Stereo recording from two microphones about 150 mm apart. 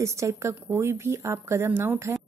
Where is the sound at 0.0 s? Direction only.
20° right (ahead or behind).